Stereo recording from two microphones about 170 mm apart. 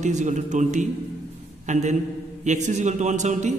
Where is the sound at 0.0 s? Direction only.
45° right (ahead or behind).